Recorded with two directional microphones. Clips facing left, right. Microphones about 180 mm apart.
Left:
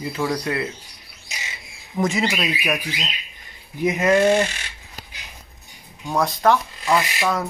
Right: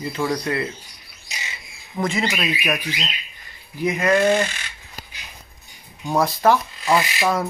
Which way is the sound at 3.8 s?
20° left (ahead or behind).